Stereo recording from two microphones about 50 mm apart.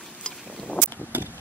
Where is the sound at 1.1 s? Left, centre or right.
Right.